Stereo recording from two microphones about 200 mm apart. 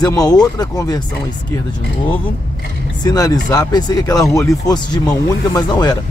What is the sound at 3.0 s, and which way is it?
Speech, 20° left (ahead or behind).